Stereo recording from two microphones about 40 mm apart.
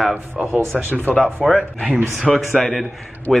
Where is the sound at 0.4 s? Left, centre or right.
Centre.